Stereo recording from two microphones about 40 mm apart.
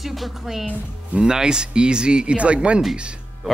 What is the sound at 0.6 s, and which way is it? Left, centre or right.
Speech, right.